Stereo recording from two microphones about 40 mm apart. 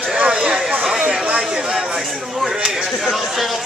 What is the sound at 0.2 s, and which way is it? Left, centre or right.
Chatter, right.